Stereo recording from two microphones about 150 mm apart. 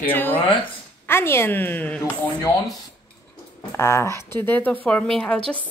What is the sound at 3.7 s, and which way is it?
A woman's voice, 20° left (ahead or behind).